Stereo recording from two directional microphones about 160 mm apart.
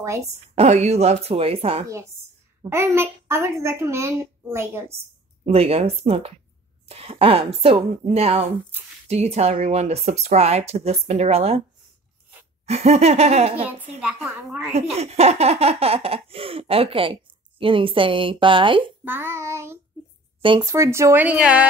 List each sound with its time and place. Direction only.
0.0 s a woman's voice: 15° right (ahead or behind)
0.3 s speech: 45° right (ahead or behind)
2.7 s a woman's voice: 15° right (ahead or behind)
5.4 s speech: 40° right (ahead or behind)
12.6 s speech: 40° right (ahead or behind)
14.0 s a woman's voice: 5° right (ahead or behind)
14.7 s speech: 40° right (ahead or behind)
19.0 s a woman's voice: 15° right (ahead or behind)